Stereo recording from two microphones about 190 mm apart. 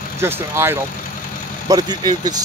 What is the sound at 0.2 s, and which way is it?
Speech, 10° right (ahead or behind).